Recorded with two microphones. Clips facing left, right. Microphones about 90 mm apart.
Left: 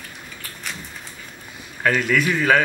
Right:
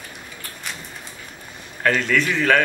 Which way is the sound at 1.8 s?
10° left (ahead or behind).